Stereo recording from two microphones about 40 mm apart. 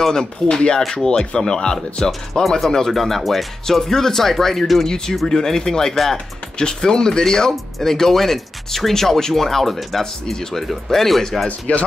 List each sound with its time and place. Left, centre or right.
0.0 s speech: centre
2.6 s speech: centre
11.4 s speech: left